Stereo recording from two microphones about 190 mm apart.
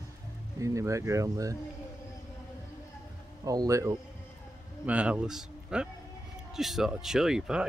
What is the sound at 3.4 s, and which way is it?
A man's voice, 15° right (ahead or behind).